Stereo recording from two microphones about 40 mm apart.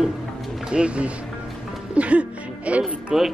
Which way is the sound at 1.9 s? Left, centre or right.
Right.